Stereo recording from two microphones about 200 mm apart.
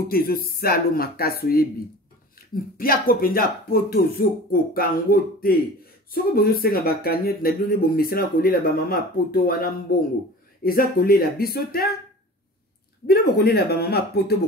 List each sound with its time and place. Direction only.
0.1 s speech: 50° left (ahead or behind)
13.0 s speech: 50° left (ahead or behind)